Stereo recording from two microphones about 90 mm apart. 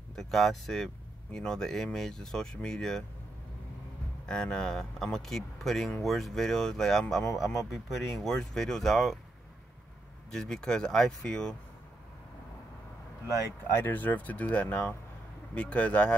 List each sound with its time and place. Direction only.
0.1 s speech: 5° left (ahead or behind)
4.3 s speech: 10° left (ahead or behind)
10.3 s speech: 5° left (ahead or behind)
13.7 s speech: 25° left (ahead or behind)